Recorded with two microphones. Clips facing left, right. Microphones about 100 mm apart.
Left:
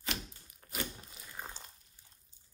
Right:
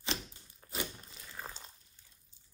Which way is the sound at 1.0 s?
5° left (ahead or behind).